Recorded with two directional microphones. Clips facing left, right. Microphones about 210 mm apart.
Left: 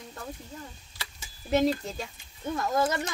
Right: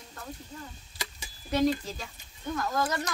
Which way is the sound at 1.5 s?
25° left (ahead or behind).